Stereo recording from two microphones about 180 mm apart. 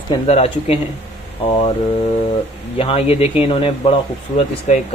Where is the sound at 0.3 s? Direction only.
35° left (ahead or behind).